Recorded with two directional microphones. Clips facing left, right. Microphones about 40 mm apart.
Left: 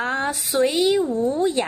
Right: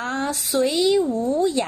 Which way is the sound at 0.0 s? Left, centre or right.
Centre.